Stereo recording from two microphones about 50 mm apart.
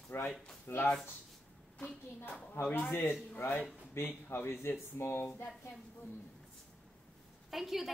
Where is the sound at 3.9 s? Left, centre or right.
Left.